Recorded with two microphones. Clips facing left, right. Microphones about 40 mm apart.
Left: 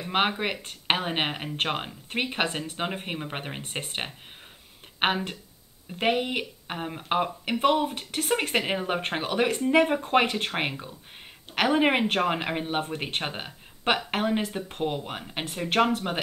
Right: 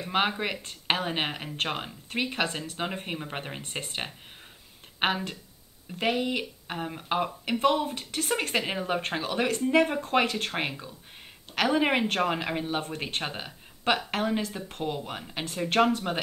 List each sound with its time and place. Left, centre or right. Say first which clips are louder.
0.1 s a woman's voice: left 2 dB; left
2.9 s a woman's voice: left 1 dB; centre
6.7 s a woman's voice: left 2 dB; centre
8.2 s a woman's voice: left 2 dB; left
10.7 s speech: left 2 dB; left
12.1 s a woman's voice: left 2 dB; centre
15.6 s speech: even; centre